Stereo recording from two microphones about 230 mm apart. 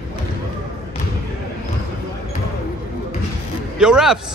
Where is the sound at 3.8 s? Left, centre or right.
Centre.